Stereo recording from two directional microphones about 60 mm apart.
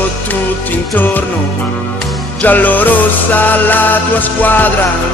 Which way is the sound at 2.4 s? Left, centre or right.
Left.